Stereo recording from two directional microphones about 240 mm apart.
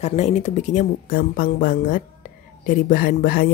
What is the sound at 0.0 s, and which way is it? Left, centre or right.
A woman's voice, left.